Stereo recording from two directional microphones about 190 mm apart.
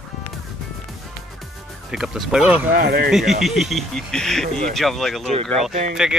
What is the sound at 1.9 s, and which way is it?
Speech, 5° right (ahead or behind).